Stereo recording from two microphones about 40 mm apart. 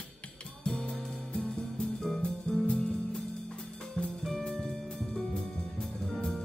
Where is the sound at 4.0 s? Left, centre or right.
Left.